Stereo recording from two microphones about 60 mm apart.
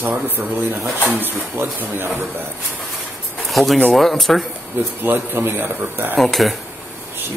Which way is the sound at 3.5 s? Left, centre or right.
Centre.